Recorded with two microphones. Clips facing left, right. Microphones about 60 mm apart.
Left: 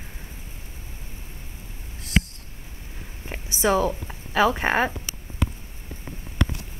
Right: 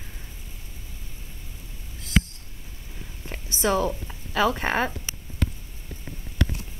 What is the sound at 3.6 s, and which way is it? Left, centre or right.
A woman's voice, centre.